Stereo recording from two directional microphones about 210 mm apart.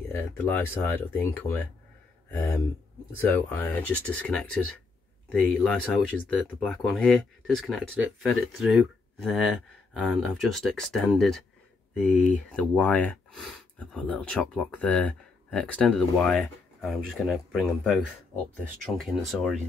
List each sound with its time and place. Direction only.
0.1 s speech: 10° left (ahead or behind)